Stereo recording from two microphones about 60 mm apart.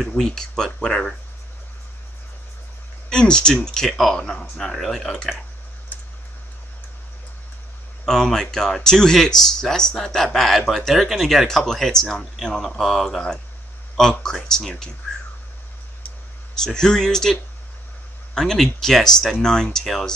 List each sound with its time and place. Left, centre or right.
0.2 s speech: centre
3.1 s speech: centre
5.9 s a sound: left
8.0 s speech: centre
16.6 s speech: centre